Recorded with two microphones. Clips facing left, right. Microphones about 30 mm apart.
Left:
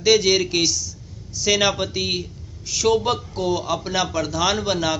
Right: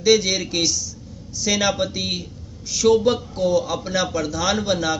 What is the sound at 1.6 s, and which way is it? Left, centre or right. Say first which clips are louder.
A man's voice: left 1 dB; left.